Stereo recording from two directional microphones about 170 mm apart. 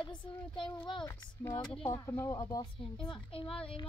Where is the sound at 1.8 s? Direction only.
15° left (ahead or behind).